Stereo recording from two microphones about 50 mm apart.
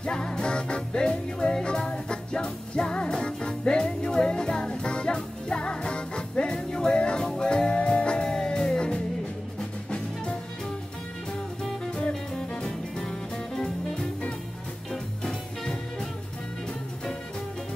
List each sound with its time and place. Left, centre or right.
0.0 s music: centre
11.8 s music: centre